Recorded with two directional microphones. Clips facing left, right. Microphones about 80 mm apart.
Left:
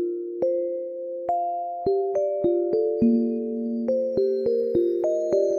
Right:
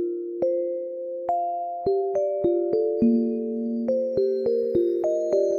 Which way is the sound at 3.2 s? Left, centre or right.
Left.